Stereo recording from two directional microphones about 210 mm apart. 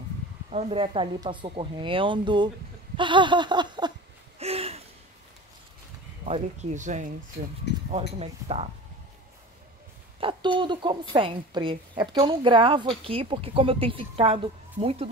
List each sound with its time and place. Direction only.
0.5 s a woman's voice: 30° right (ahead or behind)
4.4 s a sound: 30° right (ahead or behind)
6.2 s speech: 30° right (ahead or behind)
8.2 s a woman's voice: 30° right (ahead or behind)
10.2 s a woman's voice: 20° right (ahead or behind)